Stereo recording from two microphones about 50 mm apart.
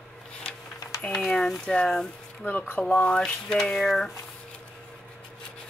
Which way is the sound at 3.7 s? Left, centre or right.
Centre.